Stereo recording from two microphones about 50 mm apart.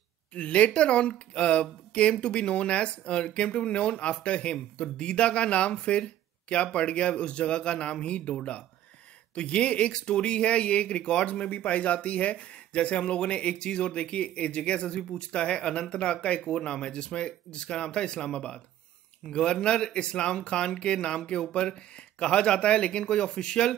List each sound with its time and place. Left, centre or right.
0.3 s speech: left